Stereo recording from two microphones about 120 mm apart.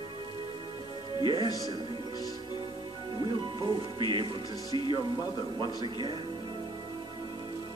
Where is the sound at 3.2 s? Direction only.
40° right (ahead or behind).